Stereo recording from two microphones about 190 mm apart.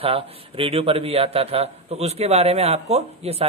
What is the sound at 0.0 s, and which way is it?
A man's voice, 30° right (ahead or behind).